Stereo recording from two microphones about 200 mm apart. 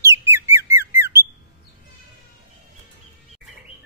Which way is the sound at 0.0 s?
15° right (ahead or behind).